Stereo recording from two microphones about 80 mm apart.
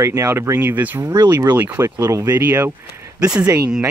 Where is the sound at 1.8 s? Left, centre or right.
Right.